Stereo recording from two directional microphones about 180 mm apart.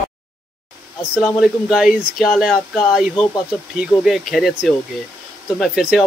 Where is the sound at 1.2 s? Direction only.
Centre (ahead or behind).